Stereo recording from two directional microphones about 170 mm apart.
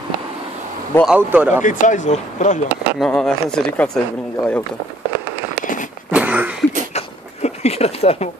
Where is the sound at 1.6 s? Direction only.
50° left (ahead or behind).